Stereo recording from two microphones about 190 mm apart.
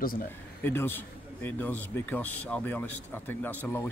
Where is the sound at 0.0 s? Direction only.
50° left (ahead or behind).